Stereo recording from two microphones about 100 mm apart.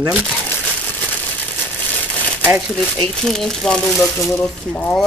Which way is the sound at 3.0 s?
5° left (ahead or behind).